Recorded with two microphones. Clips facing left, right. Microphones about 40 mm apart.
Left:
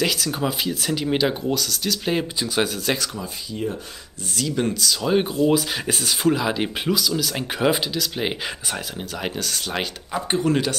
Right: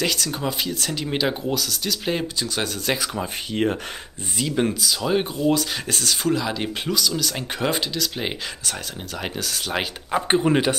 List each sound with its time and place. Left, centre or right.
0.0 s speech: centre
3.5 s speech: right
4.4 s speech: centre
4.7 s speech: centre
10.1 s speech: right